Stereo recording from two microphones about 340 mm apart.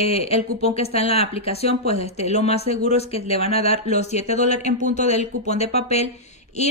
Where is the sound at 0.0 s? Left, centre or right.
Centre.